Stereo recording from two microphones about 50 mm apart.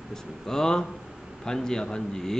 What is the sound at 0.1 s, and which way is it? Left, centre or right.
A man's voice, centre.